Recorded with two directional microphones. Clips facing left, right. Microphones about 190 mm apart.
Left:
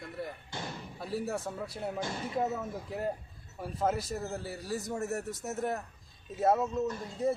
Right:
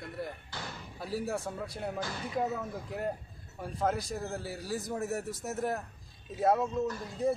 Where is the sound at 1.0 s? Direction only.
Centre (ahead or behind).